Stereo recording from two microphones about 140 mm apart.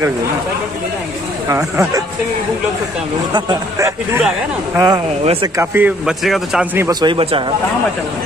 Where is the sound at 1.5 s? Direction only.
20° right (ahead or behind).